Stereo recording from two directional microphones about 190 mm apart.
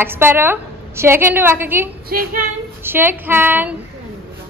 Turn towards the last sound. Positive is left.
turn(degrees=-10)  # may be behind; listen again after turning